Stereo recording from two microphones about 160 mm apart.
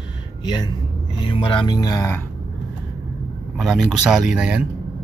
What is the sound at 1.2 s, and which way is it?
Speech, 30° left (ahead or behind).